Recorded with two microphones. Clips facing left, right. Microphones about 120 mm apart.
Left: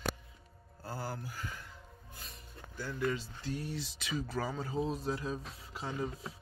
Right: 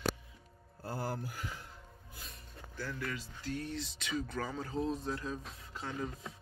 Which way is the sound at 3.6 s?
5° left (ahead or behind).